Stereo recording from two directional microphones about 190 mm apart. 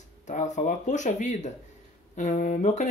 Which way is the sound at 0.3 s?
40° left (ahead or behind).